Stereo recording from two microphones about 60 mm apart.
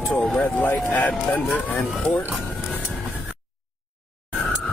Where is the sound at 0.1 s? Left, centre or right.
Centre.